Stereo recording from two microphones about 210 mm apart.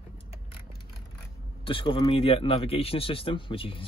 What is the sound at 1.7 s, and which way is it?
Speech, 25° left (ahead or behind).